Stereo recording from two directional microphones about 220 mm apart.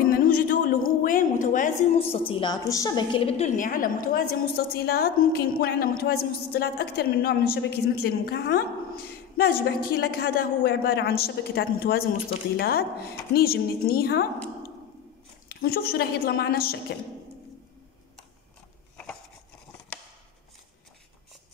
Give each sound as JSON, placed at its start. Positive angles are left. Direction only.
{"t": 0.0, "sound": "a sound", "side_deg": 40}
{"t": 1.0, "sound": "a woman's voice", "side_deg": 35}
{"t": 15.4, "sound": "a woman's voice", "side_deg": 45}